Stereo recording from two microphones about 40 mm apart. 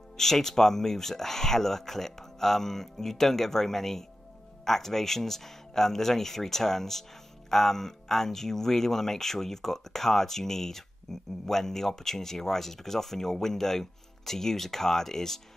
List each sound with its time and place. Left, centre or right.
0.2 s speech: centre